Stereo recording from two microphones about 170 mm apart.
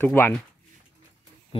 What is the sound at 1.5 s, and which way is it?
Wild animals, 35° left (ahead or behind).